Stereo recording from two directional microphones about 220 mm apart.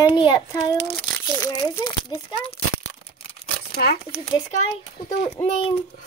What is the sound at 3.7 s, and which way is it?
Speech, 45° left (ahead or behind).